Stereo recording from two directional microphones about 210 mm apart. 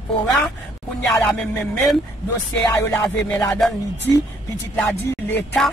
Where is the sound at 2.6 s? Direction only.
15° left (ahead or behind).